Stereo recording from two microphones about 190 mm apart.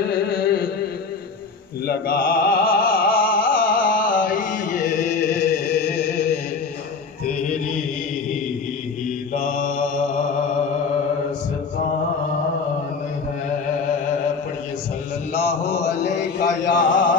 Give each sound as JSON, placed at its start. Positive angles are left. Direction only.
{"t": 0.0, "sound": "carnatic music", "side_deg": 55}
{"t": 1.9, "sound": "music", "side_deg": 50}
{"t": 9.3, "sound": "mantra", "side_deg": 45}
{"t": 15.3, "sound": "mantra", "side_deg": 55}
{"t": 15.9, "sound": "chant", "side_deg": 55}